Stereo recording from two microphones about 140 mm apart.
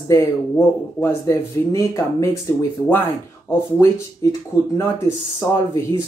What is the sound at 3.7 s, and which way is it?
Speech, 15° left (ahead or behind).